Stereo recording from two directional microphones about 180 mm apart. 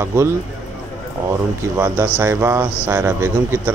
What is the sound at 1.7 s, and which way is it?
A man's voice, 15° right (ahead or behind).